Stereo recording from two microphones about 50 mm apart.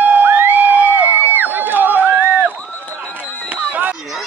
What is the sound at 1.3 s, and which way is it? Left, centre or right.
Run, right.